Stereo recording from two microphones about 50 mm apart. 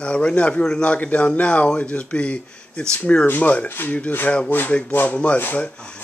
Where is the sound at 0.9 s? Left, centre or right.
Left.